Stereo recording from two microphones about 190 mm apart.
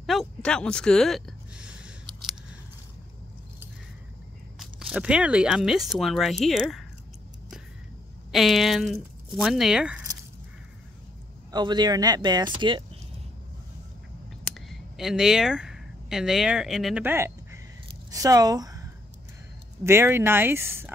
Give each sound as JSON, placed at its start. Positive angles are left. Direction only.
{"t": 0.0, "sound": "a sound", "side_deg": 0}
{"t": 4.6, "sound": "speech", "side_deg": -5}
{"t": 8.3, "sound": "speech", "side_deg": 0}
{"t": 11.5, "sound": "speech", "side_deg": -20}
{"t": 14.5, "sound": "speech", "side_deg": 0}